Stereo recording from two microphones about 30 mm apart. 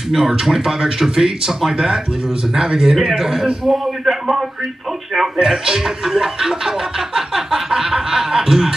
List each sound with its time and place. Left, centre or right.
0.1 s snicker: centre
2.5 s speech: centre
3.1 s snicker: centre
3.6 s speech: centre
5.4 s snicker: centre